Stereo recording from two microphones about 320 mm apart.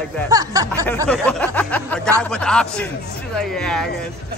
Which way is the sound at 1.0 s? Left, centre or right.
Centre.